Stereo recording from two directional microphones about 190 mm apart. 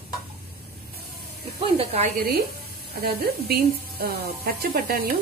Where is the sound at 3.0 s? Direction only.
55° right (ahead or behind).